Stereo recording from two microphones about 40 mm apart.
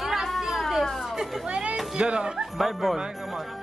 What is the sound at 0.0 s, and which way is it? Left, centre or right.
Chatter, centre.